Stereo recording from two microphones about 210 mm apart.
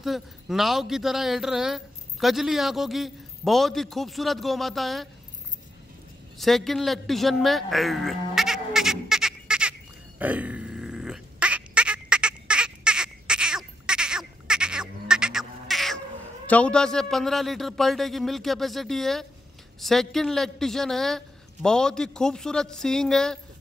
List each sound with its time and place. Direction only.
0.0 s speech: centre (ahead or behind)
6.3 s a sound: centre (ahead or behind)
16.4 s speech: 5° left (ahead or behind)